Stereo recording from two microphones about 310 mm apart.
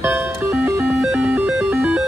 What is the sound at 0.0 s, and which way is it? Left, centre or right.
Music, centre.